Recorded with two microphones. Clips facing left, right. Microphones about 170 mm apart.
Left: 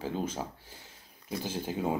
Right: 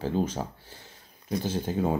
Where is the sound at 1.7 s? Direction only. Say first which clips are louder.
Right 6 dB; 10° left (ahead or behind).